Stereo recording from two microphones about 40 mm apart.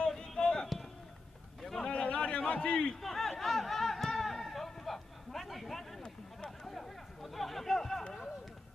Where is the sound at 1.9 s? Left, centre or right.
Left.